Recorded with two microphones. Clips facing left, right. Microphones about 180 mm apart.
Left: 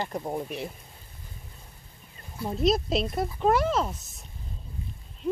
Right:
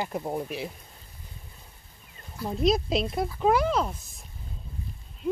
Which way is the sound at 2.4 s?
Centre (ahead or behind).